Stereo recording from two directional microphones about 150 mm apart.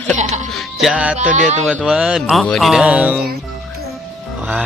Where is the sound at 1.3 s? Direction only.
55° right (ahead or behind).